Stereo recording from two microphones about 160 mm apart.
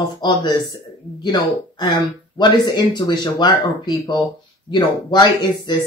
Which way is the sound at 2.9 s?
25° left (ahead or behind).